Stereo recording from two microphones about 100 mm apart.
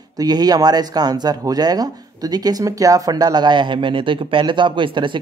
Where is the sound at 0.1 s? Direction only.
40° right (ahead or behind).